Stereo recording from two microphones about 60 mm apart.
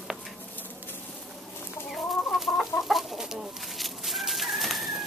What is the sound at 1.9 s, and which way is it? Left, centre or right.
Chicken, centre.